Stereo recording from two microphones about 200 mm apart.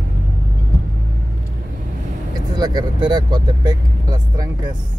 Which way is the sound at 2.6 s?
20° right (ahead or behind).